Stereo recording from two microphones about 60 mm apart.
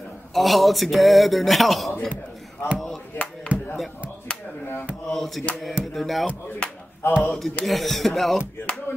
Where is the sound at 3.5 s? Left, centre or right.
Right.